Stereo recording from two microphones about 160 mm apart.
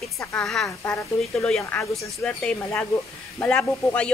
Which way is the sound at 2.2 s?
5° left (ahead or behind).